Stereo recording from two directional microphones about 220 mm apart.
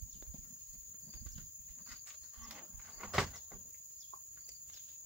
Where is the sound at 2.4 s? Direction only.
5° right (ahead or behind).